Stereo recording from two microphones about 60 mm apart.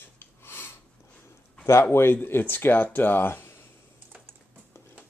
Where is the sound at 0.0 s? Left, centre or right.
Left.